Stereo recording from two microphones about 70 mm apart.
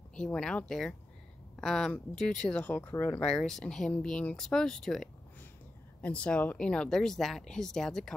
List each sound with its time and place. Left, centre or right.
0.1 s speech: centre
2.6 s speech: left
3.3 s speech: centre
5.9 s speech: centre